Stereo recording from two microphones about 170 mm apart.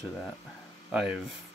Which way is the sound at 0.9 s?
5° right (ahead or behind).